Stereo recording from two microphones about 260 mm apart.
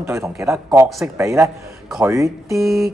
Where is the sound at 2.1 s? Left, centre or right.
Centre.